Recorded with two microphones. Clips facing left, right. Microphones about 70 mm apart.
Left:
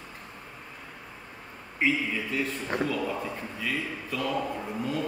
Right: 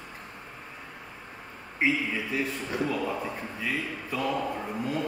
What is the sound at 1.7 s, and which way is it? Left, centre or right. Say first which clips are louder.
A man's voice: even; centre.